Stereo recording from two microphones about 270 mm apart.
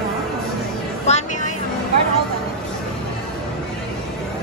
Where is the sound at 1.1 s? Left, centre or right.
Left.